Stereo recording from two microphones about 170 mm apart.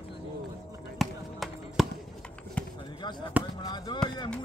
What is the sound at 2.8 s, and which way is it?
Basketball bounce, 25° left (ahead or behind).